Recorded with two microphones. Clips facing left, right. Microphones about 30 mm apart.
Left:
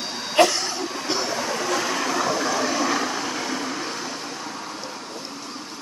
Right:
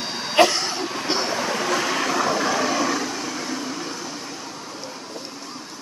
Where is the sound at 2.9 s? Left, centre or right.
Left.